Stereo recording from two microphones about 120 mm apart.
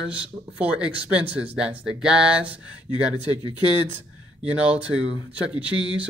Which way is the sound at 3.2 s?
40° left (ahead or behind).